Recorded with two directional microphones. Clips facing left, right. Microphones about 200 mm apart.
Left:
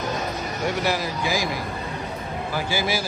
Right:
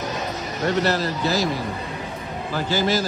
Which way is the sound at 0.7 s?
10° left (ahead or behind).